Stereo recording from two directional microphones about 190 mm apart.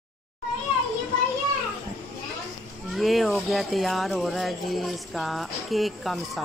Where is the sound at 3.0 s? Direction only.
Centre (ahead or behind).